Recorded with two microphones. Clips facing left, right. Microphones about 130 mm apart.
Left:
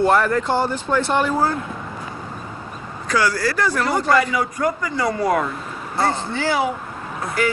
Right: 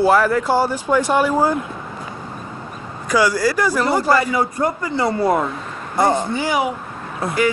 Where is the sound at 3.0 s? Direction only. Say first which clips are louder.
Right 3 dB; 10° right (ahead or behind).